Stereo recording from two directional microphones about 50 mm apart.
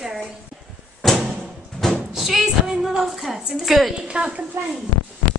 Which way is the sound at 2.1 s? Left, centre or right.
Centre.